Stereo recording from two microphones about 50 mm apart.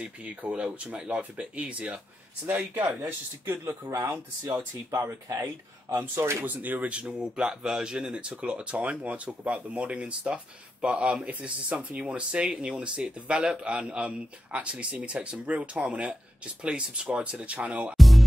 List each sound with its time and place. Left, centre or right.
0.0 s speech: right
2.4 s speech: right
3.1 s speech: right
6.4 s speech: right
17.9 s music: centre